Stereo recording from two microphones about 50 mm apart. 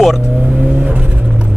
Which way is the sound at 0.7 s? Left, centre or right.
Centre.